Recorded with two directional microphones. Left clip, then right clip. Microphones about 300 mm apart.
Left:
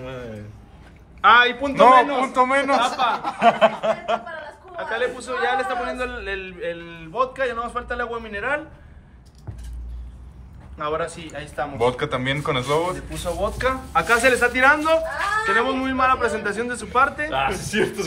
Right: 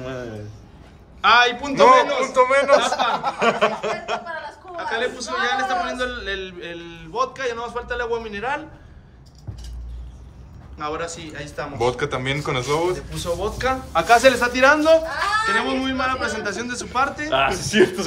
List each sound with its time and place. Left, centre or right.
1.2 s a man's voice: centre
10.8 s a man's voice: centre
14.0 s a man's voice: centre
17.3 s speech: right